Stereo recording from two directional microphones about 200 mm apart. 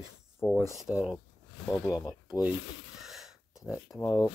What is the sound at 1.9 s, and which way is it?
Speech, 20° left (ahead or behind).